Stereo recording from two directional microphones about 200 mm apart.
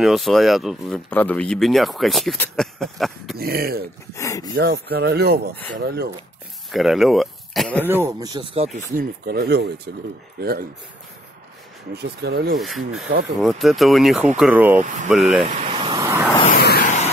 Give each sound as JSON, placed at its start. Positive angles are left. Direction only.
{"t": 0.0, "sound": "speech", "side_deg": 0}
{"t": 3.3, "sound": "speech", "side_deg": -50}
{"t": 4.1, "sound": "speech", "side_deg": 15}
{"t": 4.6, "sound": "speech", "side_deg": -55}
{"t": 6.7, "sound": "speech", "side_deg": 0}
{"t": 7.8, "sound": "speech", "side_deg": -10}
{"t": 8.9, "sound": "speech", "side_deg": -50}
{"t": 11.9, "sound": "speech", "side_deg": -55}
{"t": 12.5, "sound": "speech", "side_deg": 0}
{"t": 15.6, "sound": "vehicle", "side_deg": -25}
{"t": 16.4, "sound": "vehicle", "side_deg": 50}